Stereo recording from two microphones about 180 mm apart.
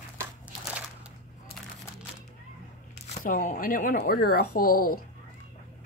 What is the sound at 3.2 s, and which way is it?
Speech, 45° left (ahead or behind).